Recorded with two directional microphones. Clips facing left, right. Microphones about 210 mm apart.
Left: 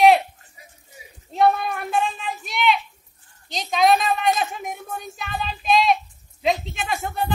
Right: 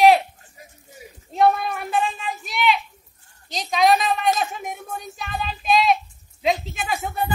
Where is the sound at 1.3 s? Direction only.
Centre (ahead or behind).